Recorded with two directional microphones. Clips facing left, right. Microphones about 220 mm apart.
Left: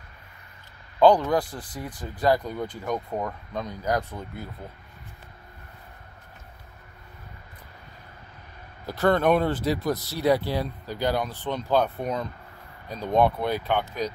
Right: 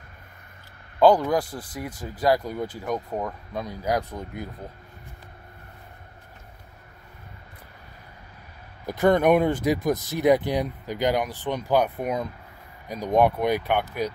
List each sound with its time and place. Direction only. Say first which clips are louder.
0.9 s speech: even; 10° right (ahead or behind)
8.8 s speech: right 2 dB; 15° right (ahead or behind)